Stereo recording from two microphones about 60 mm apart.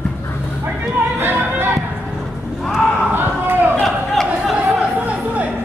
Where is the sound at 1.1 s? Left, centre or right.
Right.